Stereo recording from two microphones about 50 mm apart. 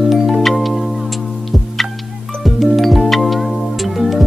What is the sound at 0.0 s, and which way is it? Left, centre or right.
Music, centre.